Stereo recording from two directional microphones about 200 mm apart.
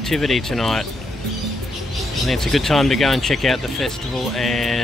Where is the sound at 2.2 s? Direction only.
Centre (ahead or behind).